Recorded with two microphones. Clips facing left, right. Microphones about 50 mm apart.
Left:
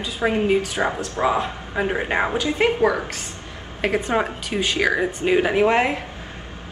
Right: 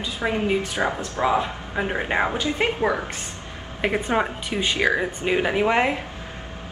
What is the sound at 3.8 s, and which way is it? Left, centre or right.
Speech, centre.